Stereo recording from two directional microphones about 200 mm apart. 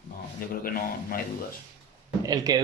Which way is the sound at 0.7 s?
45° left (ahead or behind).